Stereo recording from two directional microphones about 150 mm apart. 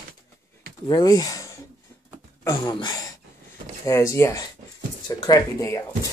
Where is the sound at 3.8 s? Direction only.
20° left (ahead or behind).